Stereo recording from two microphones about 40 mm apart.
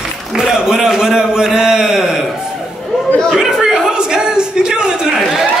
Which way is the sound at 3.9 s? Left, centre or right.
Right.